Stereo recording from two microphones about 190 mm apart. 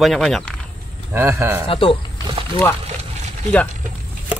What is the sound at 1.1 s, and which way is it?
Speech, 15° right (ahead or behind).